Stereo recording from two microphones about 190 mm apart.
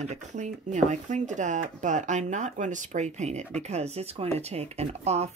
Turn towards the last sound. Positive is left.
turn(degrees=-35)  # may be behind; listen again after turning